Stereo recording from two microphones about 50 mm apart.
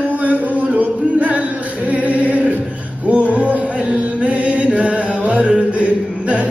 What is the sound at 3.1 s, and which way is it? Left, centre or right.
Chant, right.